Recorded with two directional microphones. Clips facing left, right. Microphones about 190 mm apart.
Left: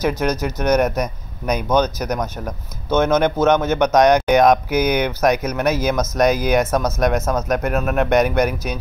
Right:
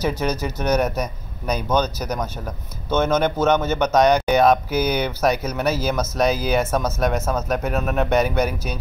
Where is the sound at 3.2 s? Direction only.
10° left (ahead or behind).